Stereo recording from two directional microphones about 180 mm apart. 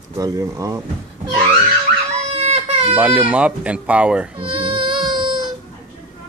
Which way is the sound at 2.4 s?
35° right (ahead or behind).